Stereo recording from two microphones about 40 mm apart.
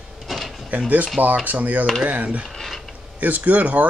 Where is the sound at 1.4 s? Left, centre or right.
Right.